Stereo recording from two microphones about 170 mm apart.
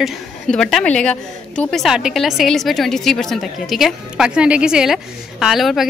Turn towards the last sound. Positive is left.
turn(degrees=0)  # may be behind; listen again after turning